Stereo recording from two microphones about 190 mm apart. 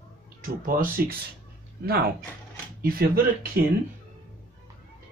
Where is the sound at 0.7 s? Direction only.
50° right (ahead or behind).